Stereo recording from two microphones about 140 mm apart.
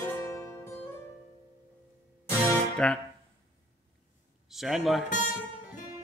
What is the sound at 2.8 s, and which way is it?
Music, 5° left (ahead or behind).